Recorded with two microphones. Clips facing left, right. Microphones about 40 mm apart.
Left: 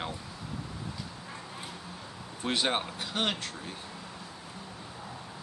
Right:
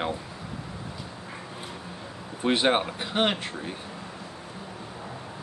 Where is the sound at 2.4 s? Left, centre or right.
Right.